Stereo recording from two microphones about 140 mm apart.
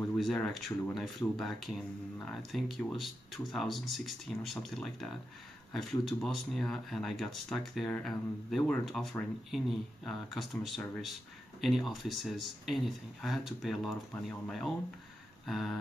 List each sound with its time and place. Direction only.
0.2 s speech: centre (ahead or behind)